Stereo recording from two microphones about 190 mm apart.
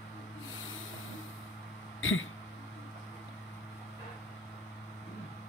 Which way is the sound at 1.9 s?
90° left.